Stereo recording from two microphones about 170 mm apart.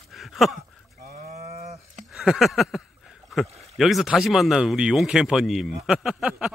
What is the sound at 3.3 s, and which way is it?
Speech, centre (ahead or behind).